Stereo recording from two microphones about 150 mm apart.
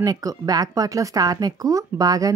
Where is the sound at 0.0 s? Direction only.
25° right (ahead or behind).